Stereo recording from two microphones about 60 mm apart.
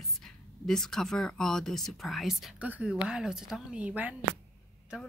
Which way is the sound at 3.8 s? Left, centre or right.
Right.